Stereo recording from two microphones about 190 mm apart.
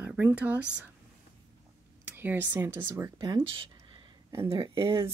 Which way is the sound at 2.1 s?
10° right (ahead or behind).